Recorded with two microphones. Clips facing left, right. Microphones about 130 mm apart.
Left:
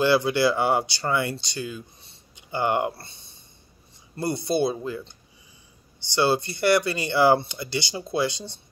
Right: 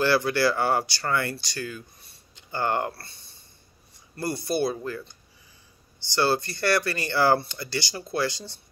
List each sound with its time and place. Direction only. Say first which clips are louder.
0.0 s speech: left 2 dB; 20° left (ahead or behind)
6.1 s speech: left 2 dB; 15° left (ahead or behind)